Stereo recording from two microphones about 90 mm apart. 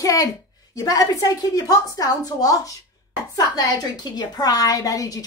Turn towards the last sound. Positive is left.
turn(degrees=40)  # may be behind; listen again after turning